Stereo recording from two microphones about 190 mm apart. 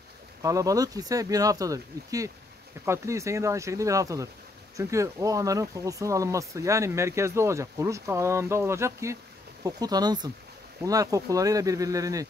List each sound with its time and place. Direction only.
0.4 s speech: 15° right (ahead or behind)